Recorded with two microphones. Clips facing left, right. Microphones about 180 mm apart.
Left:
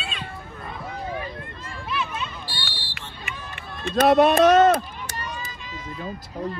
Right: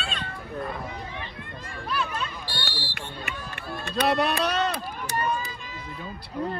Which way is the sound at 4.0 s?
50° left (ahead or behind).